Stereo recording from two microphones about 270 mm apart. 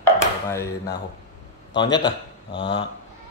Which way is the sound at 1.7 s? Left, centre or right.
Centre.